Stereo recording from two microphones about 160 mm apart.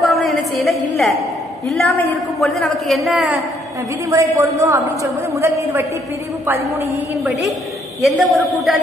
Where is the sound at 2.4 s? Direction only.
Centre (ahead or behind).